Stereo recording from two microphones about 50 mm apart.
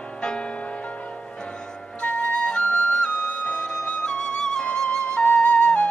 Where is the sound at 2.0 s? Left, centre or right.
Centre.